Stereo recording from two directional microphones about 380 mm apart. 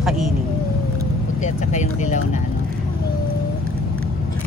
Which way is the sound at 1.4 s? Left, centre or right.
Centre.